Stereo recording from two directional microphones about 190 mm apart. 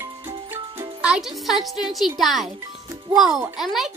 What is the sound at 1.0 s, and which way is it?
A child's voice, centre (ahead or behind).